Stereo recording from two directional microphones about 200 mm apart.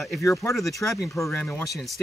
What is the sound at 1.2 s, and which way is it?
Speech, 5° left (ahead or behind).